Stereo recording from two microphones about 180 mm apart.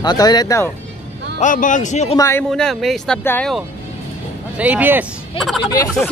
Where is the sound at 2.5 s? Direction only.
Centre (ahead or behind).